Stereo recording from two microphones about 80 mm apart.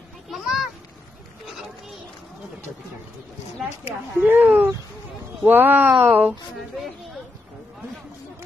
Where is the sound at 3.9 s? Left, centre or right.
Right.